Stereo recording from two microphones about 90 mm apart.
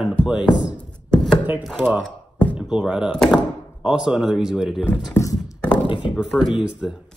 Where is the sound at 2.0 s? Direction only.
15° left (ahead or behind).